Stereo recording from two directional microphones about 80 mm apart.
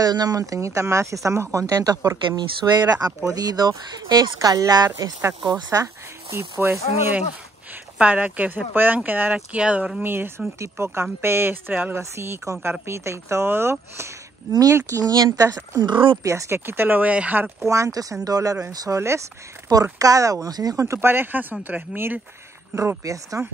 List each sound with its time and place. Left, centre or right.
0.0 s speech: right
2.3 s speech: right
6.3 s speech: right
7.7 s speech: centre
10.1 s speech: right
12.0 s speech: right
15.8 s speech: right
16.2 s speech: right
16.5 s speech: right
17.6 s speech: right
18.9 s speech: right
19.7 s speech: right
22.8 s speech: right